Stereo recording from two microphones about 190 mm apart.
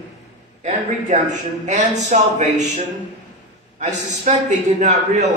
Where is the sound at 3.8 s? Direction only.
40° right (ahead or behind).